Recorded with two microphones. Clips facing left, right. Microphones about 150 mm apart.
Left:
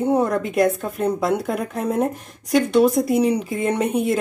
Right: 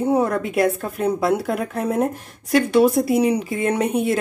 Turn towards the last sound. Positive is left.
turn(degrees=0)  # may be behind; listen again after turning